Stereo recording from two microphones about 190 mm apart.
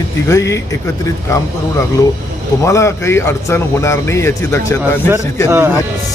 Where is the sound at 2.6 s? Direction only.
15° left (ahead or behind).